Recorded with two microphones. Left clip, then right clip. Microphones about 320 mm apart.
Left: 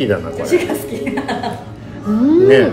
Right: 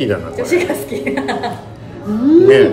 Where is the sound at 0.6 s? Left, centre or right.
Right.